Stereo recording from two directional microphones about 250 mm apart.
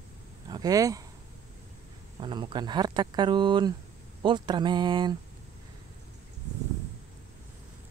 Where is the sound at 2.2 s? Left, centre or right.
Centre.